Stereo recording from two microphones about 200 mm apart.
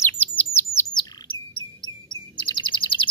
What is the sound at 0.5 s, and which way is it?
Chirp, 10° left (ahead or behind).